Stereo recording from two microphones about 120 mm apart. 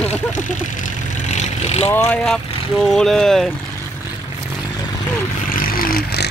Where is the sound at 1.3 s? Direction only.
60° left (ahead or behind).